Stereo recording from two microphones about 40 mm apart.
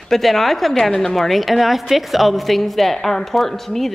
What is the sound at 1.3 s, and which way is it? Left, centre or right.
Speech, centre.